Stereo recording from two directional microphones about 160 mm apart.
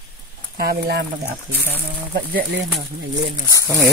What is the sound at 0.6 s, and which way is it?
Speech, 80° right.